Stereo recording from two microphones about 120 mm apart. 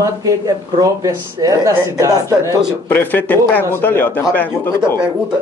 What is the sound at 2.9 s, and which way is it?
Speech, 15° left (ahead or behind).